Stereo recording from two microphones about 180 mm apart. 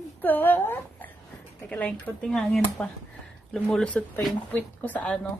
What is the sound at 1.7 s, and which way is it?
Speech, 5° left (ahead or behind).